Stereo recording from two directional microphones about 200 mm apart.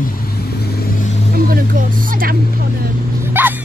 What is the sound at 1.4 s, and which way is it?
Speech, 45° right (ahead or behind).